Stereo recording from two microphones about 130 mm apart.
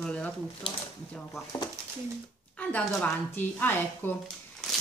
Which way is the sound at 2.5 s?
10° left (ahead or behind).